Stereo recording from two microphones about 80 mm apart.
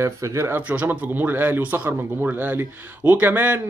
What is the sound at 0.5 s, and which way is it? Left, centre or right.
Speech, centre.